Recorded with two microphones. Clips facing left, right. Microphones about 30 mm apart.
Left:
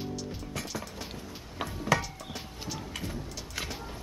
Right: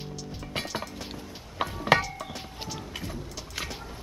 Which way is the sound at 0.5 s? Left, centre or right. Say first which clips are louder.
Right 8 dB; right.